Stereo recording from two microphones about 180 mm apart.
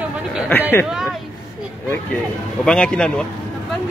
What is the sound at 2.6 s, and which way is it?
Speech, 5° left (ahead or behind).